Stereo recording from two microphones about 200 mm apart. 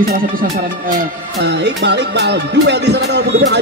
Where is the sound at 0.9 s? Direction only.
60° right (ahead or behind).